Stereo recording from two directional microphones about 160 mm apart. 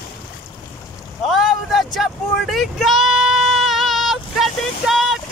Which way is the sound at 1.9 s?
Centre (ahead or behind).